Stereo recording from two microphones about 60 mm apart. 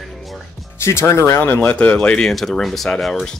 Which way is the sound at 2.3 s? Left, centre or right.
Centre.